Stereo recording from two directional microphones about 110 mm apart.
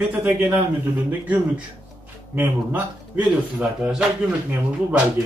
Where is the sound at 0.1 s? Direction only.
15° right (ahead or behind).